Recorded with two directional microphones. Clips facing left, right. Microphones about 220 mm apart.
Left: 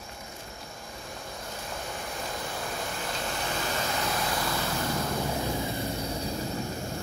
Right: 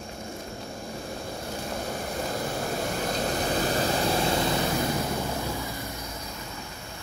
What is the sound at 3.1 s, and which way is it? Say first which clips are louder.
Vehicle: right 7 dB; 40° right (ahead or behind).